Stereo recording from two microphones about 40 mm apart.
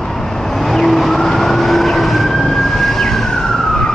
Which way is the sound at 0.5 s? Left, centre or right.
Centre.